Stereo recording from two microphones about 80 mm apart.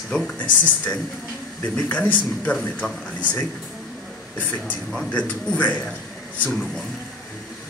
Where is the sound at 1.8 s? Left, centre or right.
Left.